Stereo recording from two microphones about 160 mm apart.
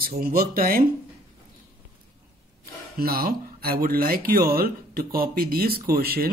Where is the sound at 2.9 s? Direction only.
70° right (ahead or behind).